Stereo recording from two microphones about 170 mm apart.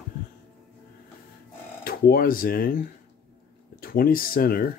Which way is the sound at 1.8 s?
60° left (ahead or behind).